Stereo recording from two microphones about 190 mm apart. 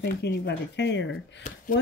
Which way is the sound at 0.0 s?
60° left (ahead or behind).